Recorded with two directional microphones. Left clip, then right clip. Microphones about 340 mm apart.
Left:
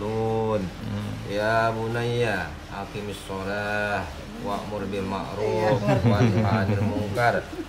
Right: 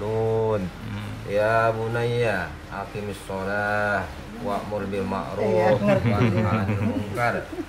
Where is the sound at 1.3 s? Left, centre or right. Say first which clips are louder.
Right 2 dB; centre.